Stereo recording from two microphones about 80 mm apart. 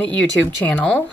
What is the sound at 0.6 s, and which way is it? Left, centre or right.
Speech, centre.